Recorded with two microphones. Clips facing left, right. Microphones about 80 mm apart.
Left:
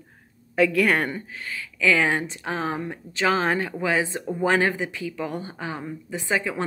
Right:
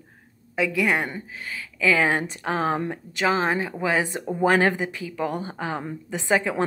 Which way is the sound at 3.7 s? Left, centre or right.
Right.